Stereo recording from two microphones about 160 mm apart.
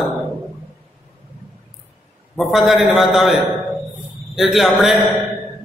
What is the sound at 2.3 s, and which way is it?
A man's voice, centre (ahead or behind).